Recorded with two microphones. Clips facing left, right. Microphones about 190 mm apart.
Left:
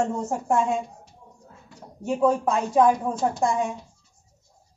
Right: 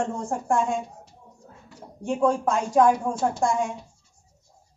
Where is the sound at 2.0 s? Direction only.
5° left (ahead or behind).